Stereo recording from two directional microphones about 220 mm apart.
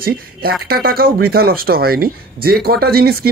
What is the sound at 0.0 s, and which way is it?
Speech, 45° right (ahead or behind).